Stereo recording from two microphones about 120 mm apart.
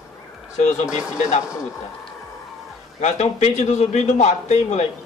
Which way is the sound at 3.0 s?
70° left (ahead or behind).